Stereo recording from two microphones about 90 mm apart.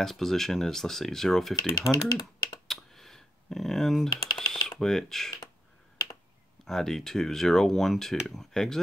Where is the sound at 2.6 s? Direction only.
5° left (ahead or behind).